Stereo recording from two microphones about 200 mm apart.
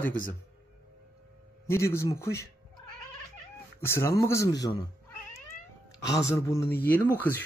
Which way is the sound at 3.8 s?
15° left (ahead or behind).